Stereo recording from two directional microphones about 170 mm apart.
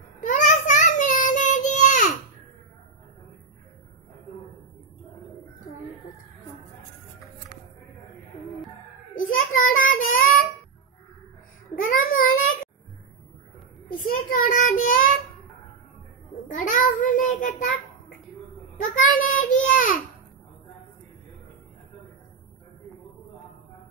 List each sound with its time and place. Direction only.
0.2 s child singing: 45° left (ahead or behind)
9.1 s child singing: 50° left (ahead or behind)
12.0 s child singing: 55° left (ahead or behind)
13.8 s a sound: 55° left (ahead or behind)
16.4 s a sound: 50° left (ahead or behind)
18.9 s child singing: 55° left (ahead or behind)